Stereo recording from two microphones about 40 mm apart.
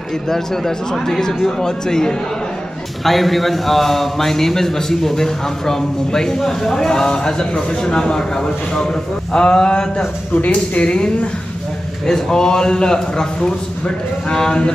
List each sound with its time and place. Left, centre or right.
0.3 s a man's voice: centre
3.1 s a man's voice: centre; by 10.0 s left
10.3 s speech: left
10.8 s a man's voice: left
12.1 s a man's voice: centre